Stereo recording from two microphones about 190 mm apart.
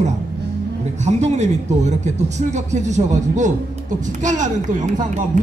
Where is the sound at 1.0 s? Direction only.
35° right (ahead or behind).